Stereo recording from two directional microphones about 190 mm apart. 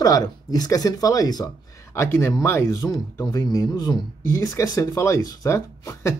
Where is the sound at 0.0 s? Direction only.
20° left (ahead or behind).